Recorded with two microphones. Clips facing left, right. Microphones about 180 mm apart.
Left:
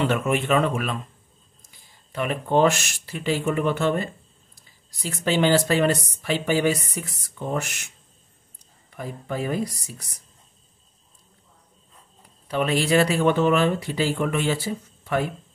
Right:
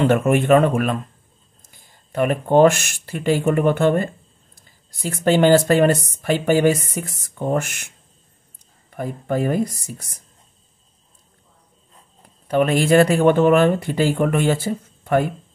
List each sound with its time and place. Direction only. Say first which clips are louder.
0.0 s speech: right 6 dB; 50° right (ahead or behind)
8.9 s speech: right 7 dB; 50° right (ahead or behind)
12.2 s speech: right 7 dB; 50° right (ahead or behind)